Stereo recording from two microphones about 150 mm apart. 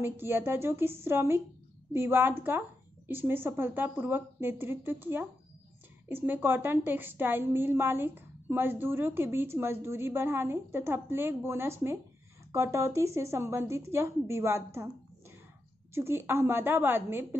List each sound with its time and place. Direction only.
0.0 s a woman's voice: 15° right (ahead or behind)
15.9 s a woman's voice: 15° right (ahead or behind)